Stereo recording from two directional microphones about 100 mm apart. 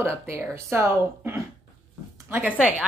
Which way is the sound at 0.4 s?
25° right (ahead or behind).